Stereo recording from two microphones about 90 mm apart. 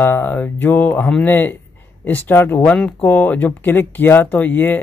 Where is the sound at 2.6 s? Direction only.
15° left (ahead or behind).